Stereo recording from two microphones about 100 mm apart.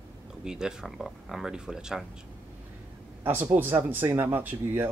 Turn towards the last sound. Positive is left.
turn(degrees=-20)  # may be behind; listen again after turning